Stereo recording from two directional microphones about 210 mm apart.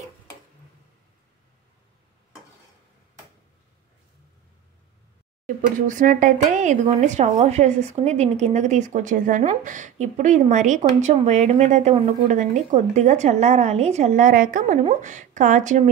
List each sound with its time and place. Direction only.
5.8 s speech: 40° right (ahead or behind)